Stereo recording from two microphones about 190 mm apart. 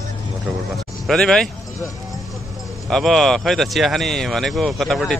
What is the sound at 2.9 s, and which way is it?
Speech, centre (ahead or behind).